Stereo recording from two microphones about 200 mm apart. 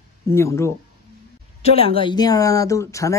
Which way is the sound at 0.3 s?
15° left (ahead or behind).